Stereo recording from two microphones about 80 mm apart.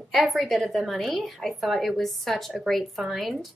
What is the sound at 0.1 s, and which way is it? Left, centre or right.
Speech, centre.